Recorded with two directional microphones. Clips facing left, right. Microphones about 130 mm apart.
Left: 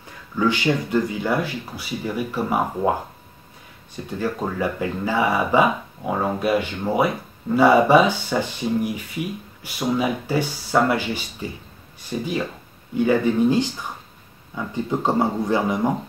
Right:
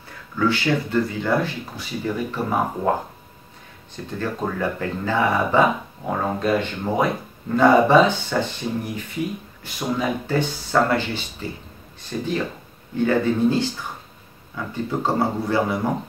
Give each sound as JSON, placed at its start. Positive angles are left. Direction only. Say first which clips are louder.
{"t": 0.4, "sound": "speech", "louder": "even", "side_deg": 15}
{"t": 3.9, "sound": "speech", "louder": "left 2 dB", "side_deg": 10}
{"t": 14.7, "sound": "speech", "louder": "left 1 dB", "side_deg": 20}